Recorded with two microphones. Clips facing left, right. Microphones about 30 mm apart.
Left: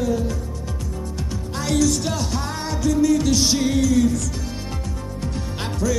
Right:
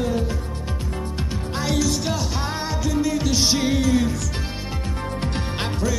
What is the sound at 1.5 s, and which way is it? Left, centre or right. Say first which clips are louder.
Music: left 3 dB; centre.